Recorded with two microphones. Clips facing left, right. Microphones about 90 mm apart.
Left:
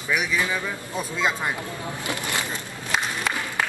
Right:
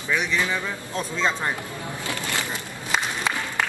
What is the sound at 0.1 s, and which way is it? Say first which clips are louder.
A man's voice: even; 10° left (ahead or behind).